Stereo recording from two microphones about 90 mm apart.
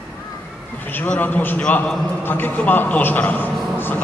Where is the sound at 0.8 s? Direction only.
20° left (ahead or behind).